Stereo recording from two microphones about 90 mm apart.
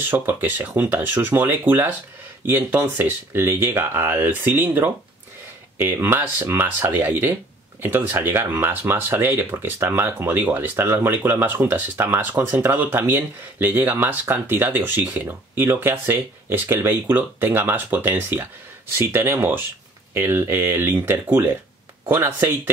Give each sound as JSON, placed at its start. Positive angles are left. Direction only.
{"t": 0.0, "sound": "speech", "side_deg": -25}